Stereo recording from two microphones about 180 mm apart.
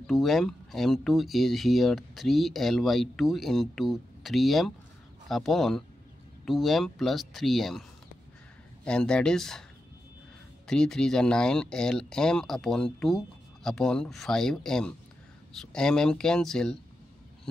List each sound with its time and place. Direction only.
0.0 s speech: centre (ahead or behind)
8.8 s speech: 5° left (ahead or behind)
10.7 s speech: 5° left (ahead or behind)